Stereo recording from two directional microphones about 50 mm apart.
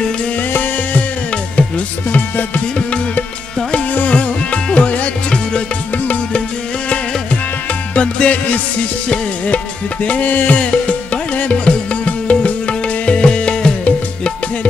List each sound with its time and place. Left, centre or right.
2.1 s music: left
7.9 s music: left
10.0 s music: left